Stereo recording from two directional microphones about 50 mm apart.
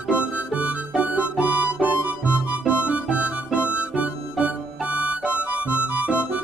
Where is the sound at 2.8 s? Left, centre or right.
Right.